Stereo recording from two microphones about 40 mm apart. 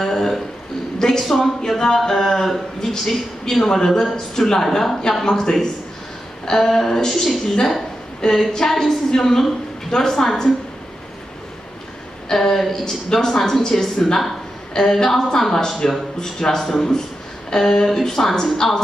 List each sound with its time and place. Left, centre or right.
0.0 s a sound: centre
1.2 s speech: centre
4.0 s speech: centre
12.3 s speech: centre